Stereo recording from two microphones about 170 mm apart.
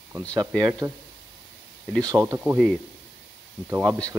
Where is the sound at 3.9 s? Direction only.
5° left (ahead or behind).